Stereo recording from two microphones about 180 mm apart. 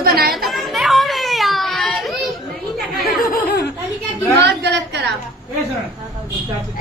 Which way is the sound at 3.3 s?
65° left (ahead or behind).